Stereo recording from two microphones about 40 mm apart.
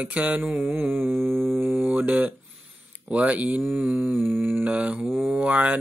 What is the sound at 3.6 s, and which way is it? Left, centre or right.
Mantra, right.